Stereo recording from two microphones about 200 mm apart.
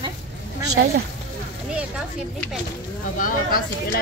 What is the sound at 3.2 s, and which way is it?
Speech, 45° left (ahead or behind).